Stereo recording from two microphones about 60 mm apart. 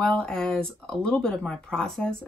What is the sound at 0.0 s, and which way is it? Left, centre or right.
Speech, centre.